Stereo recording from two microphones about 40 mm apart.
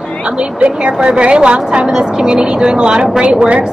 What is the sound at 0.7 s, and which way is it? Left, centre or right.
Speech, right.